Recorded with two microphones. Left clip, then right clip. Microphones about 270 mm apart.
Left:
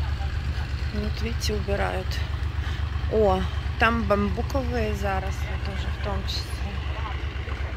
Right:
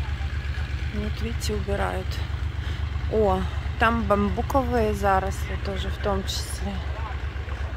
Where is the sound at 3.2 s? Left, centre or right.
Centre.